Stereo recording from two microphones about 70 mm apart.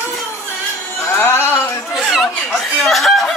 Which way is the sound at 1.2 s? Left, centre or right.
Left.